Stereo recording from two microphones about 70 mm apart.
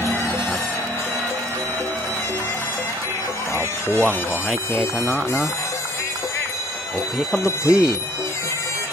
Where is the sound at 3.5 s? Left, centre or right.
Left.